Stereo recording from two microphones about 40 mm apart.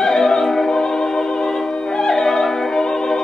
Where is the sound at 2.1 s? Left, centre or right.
Centre.